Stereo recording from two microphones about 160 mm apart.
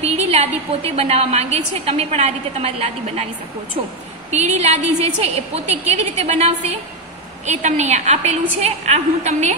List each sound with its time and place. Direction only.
0.0 s a woman's voice: 40° right (ahead or behind)
4.3 s a woman's voice: 45° right (ahead or behind)